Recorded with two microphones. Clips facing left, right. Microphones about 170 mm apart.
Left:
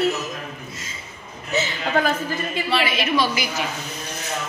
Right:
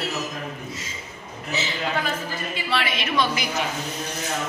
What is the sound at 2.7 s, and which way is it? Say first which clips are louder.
Speech: left 3 dB; 5° left (ahead or behind).